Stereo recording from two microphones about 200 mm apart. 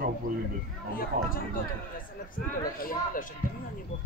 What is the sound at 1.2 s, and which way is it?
Speech, 45° right (ahead or behind).